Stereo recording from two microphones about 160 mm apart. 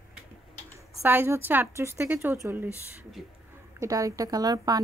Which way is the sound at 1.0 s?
15° right (ahead or behind).